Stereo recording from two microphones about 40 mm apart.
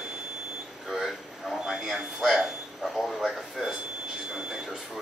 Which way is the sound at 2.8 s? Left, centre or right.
Centre.